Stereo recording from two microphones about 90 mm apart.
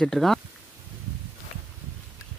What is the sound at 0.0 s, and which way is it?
Speech, 5° left (ahead or behind).